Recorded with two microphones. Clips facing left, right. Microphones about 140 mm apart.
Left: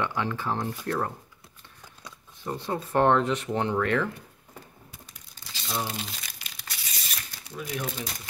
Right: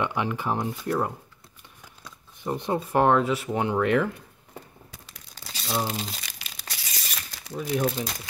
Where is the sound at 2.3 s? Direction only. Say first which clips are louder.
Right 4 dB; 15° right (ahead or behind).